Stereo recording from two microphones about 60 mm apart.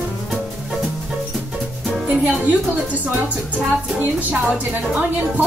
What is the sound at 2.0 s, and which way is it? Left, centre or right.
Music, right.